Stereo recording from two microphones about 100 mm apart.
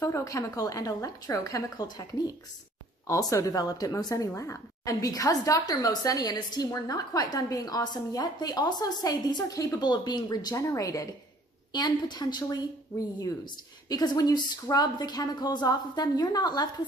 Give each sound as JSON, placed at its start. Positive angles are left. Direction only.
{"t": 0.0, "sound": "a woman's voice", "side_deg": 30}
{"t": 11.7, "sound": "a woman's voice", "side_deg": 45}
{"t": 13.8, "sound": "a woman's voice", "side_deg": 40}